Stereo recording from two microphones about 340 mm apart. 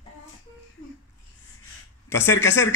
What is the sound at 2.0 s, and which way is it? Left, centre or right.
Speech, centre.